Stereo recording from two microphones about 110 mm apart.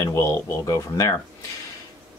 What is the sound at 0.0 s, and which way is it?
Speech, 30° left (ahead or behind).